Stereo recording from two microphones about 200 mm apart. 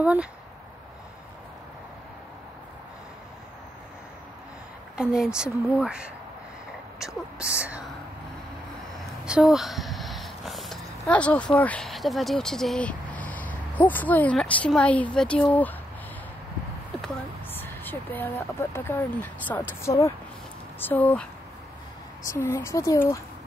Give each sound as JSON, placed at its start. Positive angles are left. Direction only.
{"t": 0.0, "sound": "a woman's voice", "side_deg": -5}
{"t": 4.9, "sound": "a woman's voice", "side_deg": -5}
{"t": 8.9, "sound": "speech", "side_deg": -5}
{"t": 17.0, "sound": "speech", "side_deg": 10}